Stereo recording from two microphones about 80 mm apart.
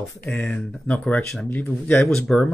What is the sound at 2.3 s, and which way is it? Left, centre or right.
Speech, centre.